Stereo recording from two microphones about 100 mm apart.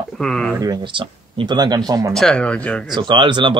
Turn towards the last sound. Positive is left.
turn(degrees=-55)  # may be behind; listen again after turning